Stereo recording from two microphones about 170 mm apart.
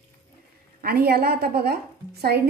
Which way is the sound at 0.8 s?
65° right (ahead or behind).